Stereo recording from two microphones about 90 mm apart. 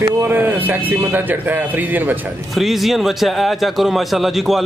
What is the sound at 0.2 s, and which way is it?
Speech, 25° right (ahead or behind).